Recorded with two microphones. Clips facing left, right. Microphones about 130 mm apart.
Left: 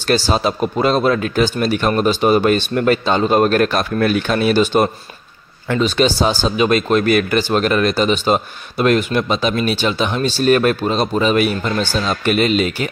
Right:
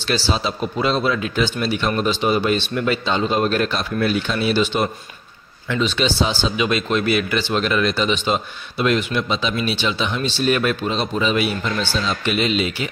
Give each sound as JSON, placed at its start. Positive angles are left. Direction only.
{"t": 0.0, "sound": "speech", "side_deg": 50}